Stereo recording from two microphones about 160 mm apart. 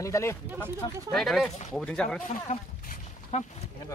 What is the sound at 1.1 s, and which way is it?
Speech, centre (ahead or behind).